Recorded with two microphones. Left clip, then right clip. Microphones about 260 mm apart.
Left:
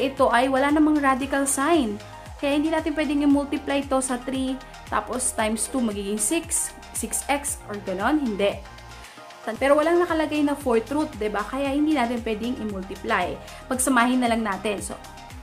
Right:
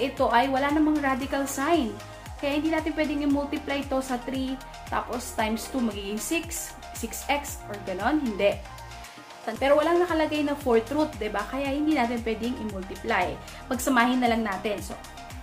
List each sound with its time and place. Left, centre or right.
0.0 s a woman's voice: left